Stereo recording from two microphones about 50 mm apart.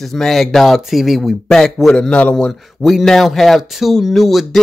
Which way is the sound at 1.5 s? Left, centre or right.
Centre.